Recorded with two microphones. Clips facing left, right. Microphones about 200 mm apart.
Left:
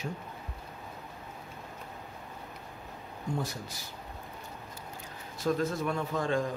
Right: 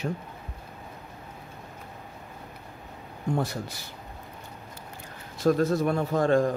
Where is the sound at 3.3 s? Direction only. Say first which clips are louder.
Right 6 dB; 65° right (ahead or behind).